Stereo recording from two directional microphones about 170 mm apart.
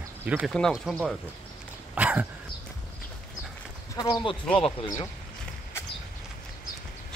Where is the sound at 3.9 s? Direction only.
25° left (ahead or behind).